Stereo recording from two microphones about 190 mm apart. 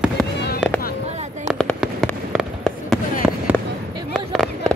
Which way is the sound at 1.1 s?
35° right (ahead or behind).